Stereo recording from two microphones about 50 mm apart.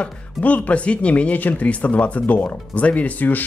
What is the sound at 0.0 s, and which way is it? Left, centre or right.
Speech, left.